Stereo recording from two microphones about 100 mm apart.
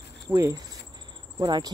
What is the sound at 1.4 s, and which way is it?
Speech, 45° right (ahead or behind).